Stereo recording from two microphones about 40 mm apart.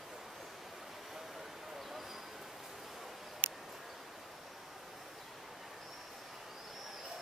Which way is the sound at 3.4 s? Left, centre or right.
Right.